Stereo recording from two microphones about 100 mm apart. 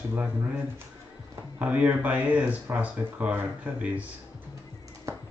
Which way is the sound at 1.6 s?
15° right (ahead or behind).